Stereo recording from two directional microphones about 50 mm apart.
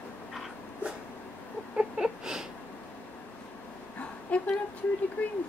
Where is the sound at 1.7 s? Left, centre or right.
Centre.